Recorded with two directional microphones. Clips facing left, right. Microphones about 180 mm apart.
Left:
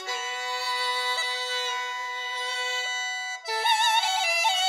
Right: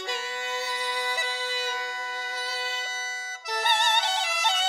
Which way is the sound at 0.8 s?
20° right (ahead or behind).